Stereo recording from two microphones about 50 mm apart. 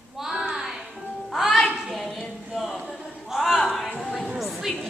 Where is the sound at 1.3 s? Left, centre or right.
Centre.